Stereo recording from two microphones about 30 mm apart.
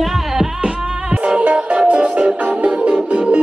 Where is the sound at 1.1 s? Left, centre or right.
Right.